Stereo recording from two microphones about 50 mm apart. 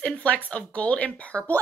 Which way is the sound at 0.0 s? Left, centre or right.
Left.